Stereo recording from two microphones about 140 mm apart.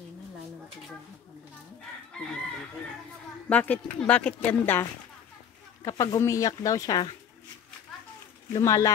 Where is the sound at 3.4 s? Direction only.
10° left (ahead or behind).